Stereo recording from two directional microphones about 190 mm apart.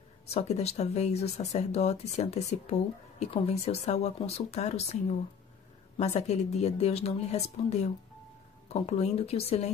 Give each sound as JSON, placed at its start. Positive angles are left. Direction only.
{"t": 0.3, "sound": "speech", "side_deg": 35}
{"t": 5.9, "sound": "speech", "side_deg": 35}